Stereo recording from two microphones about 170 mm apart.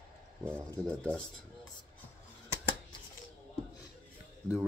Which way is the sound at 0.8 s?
10° left (ahead or behind).